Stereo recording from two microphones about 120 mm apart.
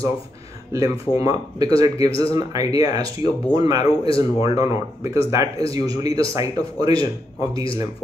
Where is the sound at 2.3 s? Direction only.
30° right (ahead or behind).